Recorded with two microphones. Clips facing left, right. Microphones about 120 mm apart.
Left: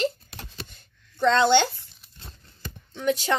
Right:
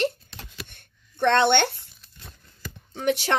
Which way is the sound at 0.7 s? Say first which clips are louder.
Even; 65° right (ahead or behind).